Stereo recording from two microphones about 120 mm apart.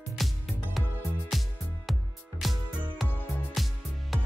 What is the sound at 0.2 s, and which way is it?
Music, centre (ahead or behind).